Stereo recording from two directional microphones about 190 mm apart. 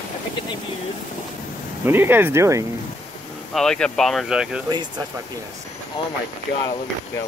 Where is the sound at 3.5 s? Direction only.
5° left (ahead or behind).